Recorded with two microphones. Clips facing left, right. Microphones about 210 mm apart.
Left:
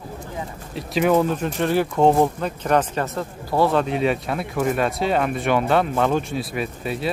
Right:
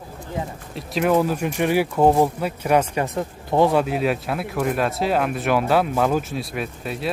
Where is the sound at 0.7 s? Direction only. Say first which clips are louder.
Left 1 dB; centre (ahead or behind); by 3.8 s 15° right (ahead or behind).